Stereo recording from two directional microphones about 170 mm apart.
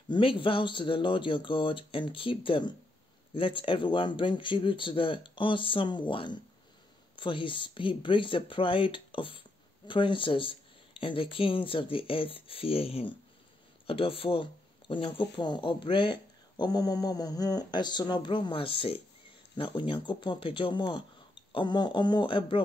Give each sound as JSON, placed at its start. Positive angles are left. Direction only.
{"t": 0.1, "sound": "speech", "side_deg": 30}